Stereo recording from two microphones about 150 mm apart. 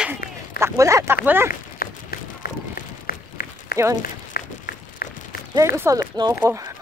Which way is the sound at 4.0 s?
75° left (ahead or behind).